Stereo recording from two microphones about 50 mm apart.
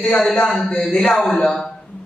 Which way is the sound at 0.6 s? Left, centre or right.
Centre.